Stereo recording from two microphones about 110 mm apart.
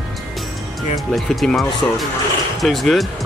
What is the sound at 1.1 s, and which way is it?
Speech, centre (ahead or behind).